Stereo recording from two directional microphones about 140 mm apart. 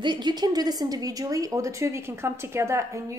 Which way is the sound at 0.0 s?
30° right (ahead or behind).